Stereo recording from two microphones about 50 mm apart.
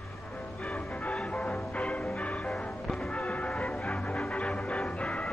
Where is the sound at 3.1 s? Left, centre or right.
Left.